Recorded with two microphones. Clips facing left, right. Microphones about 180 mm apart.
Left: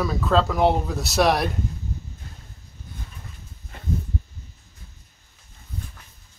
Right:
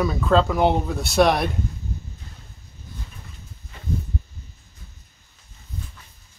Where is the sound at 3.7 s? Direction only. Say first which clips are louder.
Left 1 dB; 50° left (ahead or behind).